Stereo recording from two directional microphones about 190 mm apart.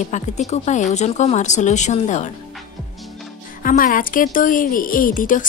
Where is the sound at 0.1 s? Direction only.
40° left (ahead or behind).